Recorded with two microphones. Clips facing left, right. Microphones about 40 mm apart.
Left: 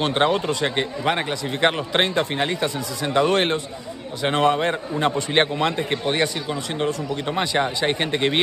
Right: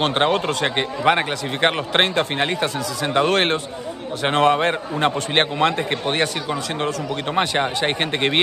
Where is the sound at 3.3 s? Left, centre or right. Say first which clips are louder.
Right 1 dB; right.